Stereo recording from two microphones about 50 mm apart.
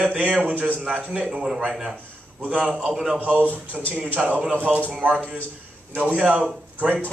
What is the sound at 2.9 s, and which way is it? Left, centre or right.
Speech, centre.